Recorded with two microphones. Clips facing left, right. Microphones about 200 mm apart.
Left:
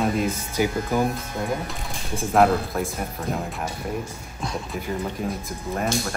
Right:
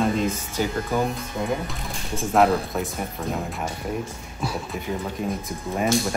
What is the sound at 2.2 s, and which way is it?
Speech, centre (ahead or behind).